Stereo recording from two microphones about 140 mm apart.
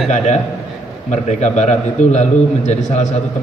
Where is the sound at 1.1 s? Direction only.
55° left (ahead or behind).